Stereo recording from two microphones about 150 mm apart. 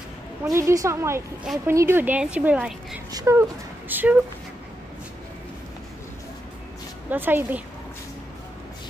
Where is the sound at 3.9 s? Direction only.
10° right (ahead or behind).